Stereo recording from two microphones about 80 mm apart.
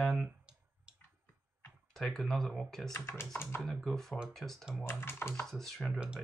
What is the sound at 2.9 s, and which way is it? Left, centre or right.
Speech, left.